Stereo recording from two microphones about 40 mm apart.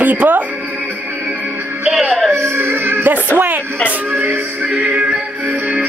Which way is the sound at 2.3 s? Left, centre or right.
Right.